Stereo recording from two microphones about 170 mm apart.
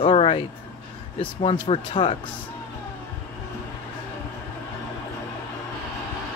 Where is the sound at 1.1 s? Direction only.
30° left (ahead or behind).